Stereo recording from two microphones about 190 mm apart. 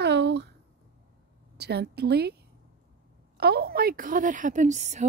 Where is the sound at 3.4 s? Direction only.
55° right (ahead or behind); by 5.1 s 40° right (ahead or behind).